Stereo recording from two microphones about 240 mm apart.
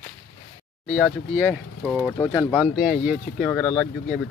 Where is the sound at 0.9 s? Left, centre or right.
Centre.